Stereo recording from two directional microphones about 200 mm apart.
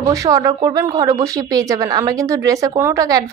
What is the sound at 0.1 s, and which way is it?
Speech, 15° right (ahead or behind).